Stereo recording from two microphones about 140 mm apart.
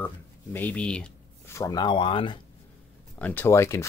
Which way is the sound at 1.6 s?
30° left (ahead or behind).